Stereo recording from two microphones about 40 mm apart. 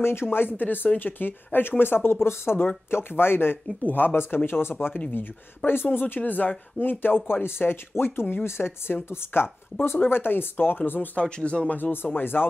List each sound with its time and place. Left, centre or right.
0.0 s speech: left
2.2 s speech: left
3.8 s speech: left
4.5 s speech: left
5.7 s speech: left
7.4 s speech: left
10.0 s speech: left
11.1 s speech: left
11.7 s speech: left